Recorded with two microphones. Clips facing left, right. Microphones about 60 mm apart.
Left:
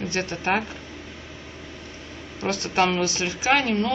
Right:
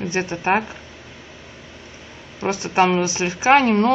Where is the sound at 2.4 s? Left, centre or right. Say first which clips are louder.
Right 4 dB; centre; by 3.9 s right.